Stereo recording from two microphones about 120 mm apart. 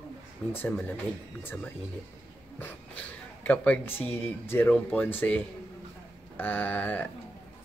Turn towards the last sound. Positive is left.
turn(degrees=15)  # may be behind; listen again after turning